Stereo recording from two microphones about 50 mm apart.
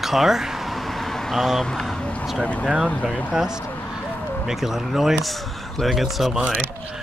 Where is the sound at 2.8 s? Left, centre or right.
Left.